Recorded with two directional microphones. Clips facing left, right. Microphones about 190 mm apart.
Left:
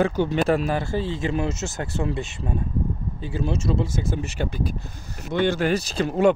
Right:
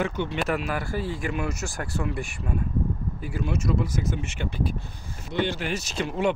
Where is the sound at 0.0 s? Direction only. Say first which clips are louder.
Left 6 dB; 35° left (ahead or behind).